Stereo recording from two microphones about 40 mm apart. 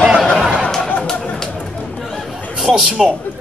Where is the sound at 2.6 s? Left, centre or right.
Centre.